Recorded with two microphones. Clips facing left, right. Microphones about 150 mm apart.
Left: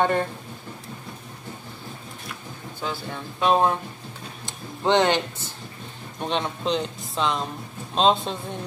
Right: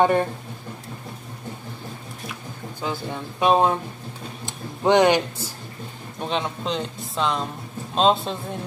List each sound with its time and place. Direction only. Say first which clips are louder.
0.0 s speech: right 3 dB; 15° right (ahead or behind)
2.8 s speech: right 2 dB; 15° right (ahead or behind)
4.5 s a sound: right 3 dB; 15° right (ahead or behind)
6.2 s speech: even; centre (ahead or behind)